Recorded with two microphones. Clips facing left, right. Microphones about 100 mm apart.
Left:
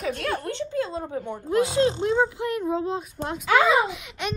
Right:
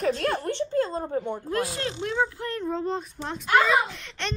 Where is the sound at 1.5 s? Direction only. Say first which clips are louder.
Left 10 dB; 20° left (ahead or behind); by 3.1 s 5° left (ahead or behind).